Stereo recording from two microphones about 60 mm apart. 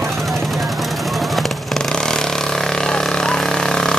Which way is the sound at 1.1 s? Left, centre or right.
Centre.